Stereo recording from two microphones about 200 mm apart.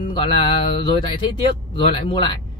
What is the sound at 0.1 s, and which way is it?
Speech, 25° left (ahead or behind).